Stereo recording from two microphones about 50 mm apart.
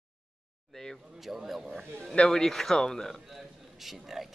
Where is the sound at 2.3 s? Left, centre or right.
Centre.